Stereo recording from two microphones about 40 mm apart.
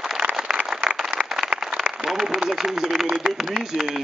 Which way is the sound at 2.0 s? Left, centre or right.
Centre.